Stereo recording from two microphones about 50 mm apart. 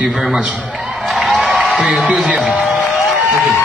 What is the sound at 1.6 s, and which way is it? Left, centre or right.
Music, centre.